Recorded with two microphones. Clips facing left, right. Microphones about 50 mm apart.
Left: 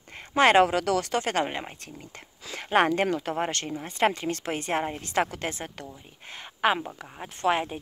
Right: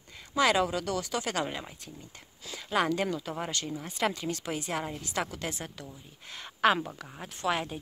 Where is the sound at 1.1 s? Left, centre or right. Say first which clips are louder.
Left 5 dB; left.